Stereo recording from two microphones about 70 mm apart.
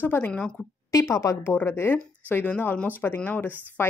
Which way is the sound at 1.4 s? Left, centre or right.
Left.